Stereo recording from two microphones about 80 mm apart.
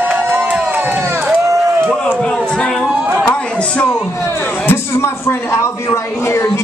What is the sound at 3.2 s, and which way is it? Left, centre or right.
A man's voice, left.